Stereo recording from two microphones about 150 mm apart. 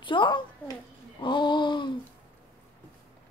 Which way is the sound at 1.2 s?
30° left (ahead or behind).